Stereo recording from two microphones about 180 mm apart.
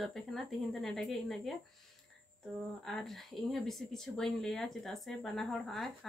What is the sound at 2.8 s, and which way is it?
Speech, centre (ahead or behind).